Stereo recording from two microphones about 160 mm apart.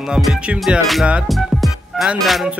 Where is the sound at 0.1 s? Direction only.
5° right (ahead or behind).